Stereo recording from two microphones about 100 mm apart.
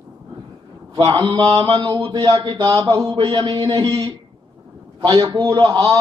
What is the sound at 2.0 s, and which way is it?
Speech, 65° right (ahead or behind).